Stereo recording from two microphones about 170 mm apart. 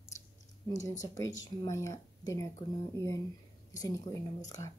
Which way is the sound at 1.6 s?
20° left (ahead or behind).